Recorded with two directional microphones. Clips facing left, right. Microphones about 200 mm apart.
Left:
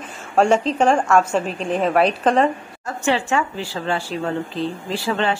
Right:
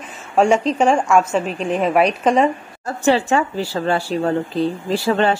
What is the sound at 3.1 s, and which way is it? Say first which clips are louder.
A woman's voice: right 4 dB; 35° right (ahead or behind).